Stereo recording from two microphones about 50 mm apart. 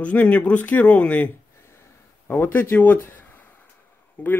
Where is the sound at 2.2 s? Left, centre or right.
Left.